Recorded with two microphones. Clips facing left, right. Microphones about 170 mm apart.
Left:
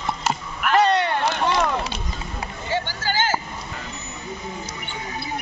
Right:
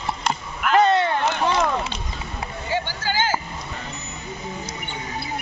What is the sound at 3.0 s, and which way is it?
Vehicle, 15° right (ahead or behind).